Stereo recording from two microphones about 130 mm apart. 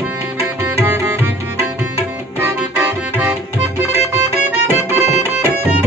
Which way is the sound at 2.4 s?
15° right (ahead or behind).